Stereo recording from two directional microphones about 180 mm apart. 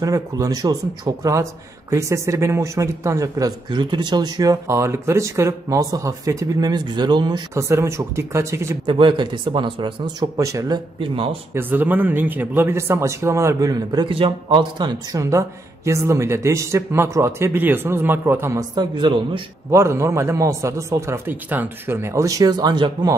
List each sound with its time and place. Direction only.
0.0 s speech: 20° right (ahead or behind)
8.8 s speech: 30° right (ahead or behind)
11.0 s speech: 30° right (ahead or behind)
11.5 s speech: 10° right (ahead or behind); by 19.4 s 25° right (ahead or behind)
19.7 s speech: 15° right (ahead or behind)